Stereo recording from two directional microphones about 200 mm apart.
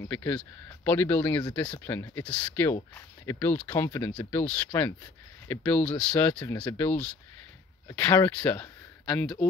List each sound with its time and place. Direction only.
0.1 s speech: 10° left (ahead or behind)